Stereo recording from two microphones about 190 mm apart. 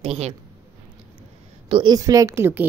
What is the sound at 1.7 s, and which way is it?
Speech, 25° right (ahead or behind).